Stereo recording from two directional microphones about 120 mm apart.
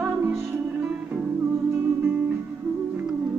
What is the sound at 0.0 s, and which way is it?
Music, 15° right (ahead or behind).